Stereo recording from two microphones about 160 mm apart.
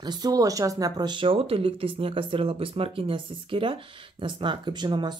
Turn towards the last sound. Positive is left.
turn(degrees=-30)  # may be behind; listen again after turning